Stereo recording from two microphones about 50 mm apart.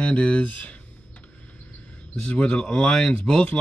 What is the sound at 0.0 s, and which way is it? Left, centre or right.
Speech, left.